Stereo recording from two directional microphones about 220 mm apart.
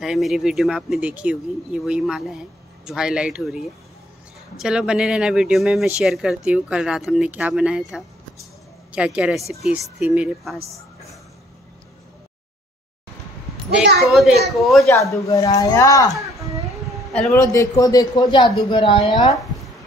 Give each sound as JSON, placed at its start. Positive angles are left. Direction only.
{"t": 0.0, "sound": "speech", "side_deg": 0}
{"t": 13.9, "sound": "speech", "side_deg": 0}
{"t": 14.9, "sound": "a woman's voice", "side_deg": 15}
{"t": 17.1, "sound": "a man's voice", "side_deg": 5}
{"t": 17.4, "sound": "a woman's voice", "side_deg": 15}